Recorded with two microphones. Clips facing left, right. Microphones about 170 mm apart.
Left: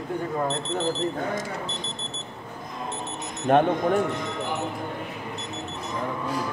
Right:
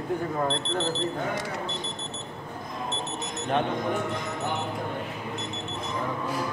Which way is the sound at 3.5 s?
50° left (ahead or behind).